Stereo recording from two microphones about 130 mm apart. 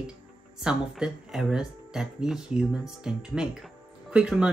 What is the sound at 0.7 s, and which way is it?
Speech, 5° right (ahead or behind).